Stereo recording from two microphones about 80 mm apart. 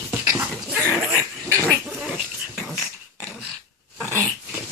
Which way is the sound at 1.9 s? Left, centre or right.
Centre.